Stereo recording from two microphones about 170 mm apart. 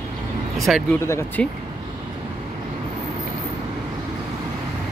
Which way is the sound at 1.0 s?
15° left (ahead or behind).